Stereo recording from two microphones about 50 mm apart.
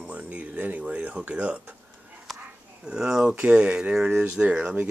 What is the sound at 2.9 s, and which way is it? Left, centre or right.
Speech, centre.